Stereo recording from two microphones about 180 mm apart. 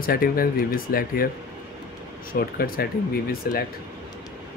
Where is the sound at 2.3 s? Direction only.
55° left (ahead or behind).